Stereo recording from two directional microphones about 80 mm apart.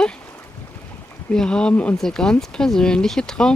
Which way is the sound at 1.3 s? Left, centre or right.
Centre.